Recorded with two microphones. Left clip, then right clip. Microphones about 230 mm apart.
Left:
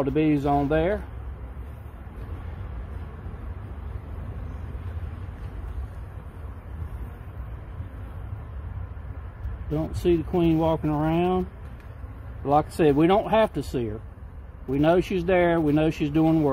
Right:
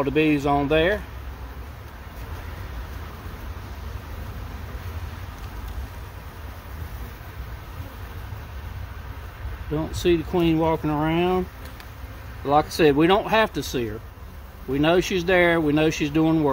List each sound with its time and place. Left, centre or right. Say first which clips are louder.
0.0 s speech: right 2 dB; centre
9.8 s speech: right 2 dB; centre
12.4 s speech: right 2 dB; centre